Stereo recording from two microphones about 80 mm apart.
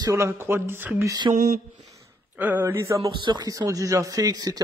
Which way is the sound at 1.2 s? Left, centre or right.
Right.